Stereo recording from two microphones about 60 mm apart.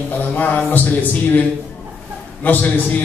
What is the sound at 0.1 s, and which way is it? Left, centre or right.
A man's voice, left.